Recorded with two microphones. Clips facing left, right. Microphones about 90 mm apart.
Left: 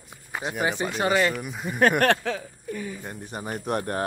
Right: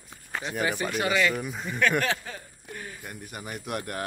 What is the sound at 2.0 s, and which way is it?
Speech, 75° left (ahead or behind).